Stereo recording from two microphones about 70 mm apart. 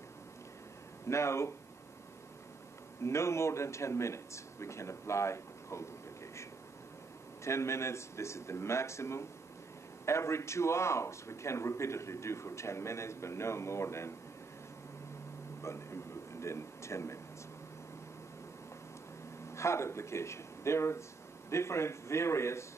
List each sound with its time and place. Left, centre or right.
1.0 s a man's voice: left
3.0 s speech: left
7.4 s a man's voice: left
15.6 s a sound: left
19.5 s a man's voice: left